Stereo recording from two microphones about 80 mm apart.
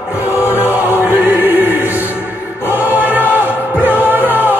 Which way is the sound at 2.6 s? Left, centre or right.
Right.